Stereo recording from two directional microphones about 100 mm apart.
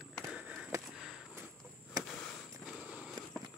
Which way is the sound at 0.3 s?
10° right (ahead or behind).